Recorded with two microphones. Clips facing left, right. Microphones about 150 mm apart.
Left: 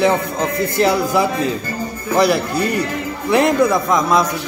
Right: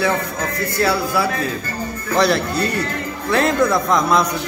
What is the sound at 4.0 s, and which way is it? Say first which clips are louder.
Speech: left 1 dB; centre (ahead or behind).